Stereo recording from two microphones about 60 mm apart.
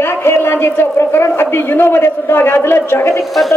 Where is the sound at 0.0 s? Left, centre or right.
Left.